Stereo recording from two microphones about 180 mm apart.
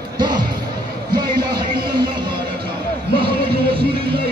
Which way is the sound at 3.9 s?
30° right (ahead or behind).